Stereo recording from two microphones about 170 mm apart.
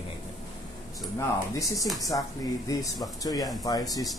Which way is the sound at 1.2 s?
20° left (ahead or behind).